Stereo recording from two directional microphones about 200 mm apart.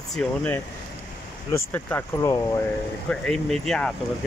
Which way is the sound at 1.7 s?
10° left (ahead or behind).